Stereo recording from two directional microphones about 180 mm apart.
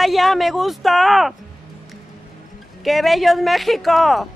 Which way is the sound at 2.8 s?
Centre (ahead or behind).